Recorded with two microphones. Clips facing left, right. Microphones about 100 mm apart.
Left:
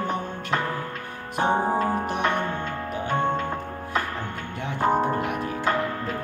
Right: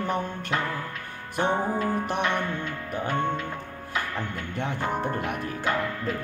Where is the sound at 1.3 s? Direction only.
30° left (ahead or behind).